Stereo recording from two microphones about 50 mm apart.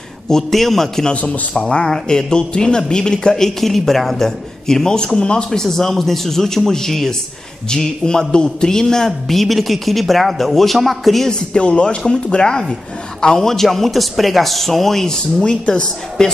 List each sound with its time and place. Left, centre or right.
0.3 s a man's voice: centre
1.1 s speech: left
1.6 s a man's voice: centre
11.2 s a man's voice: left